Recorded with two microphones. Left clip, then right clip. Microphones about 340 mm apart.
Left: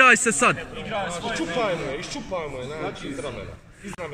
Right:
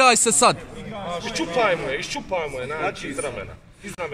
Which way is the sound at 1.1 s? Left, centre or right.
Right.